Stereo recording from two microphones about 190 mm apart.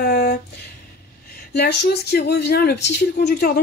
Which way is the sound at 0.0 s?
60° left (ahead or behind).